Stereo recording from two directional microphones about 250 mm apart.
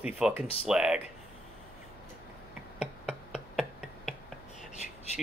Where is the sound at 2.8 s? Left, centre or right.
Centre.